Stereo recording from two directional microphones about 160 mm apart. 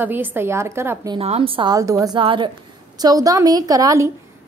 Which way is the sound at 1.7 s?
20° right (ahead or behind).